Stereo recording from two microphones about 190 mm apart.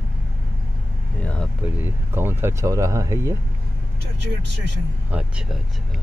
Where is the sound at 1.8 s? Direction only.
10° right (ahead or behind).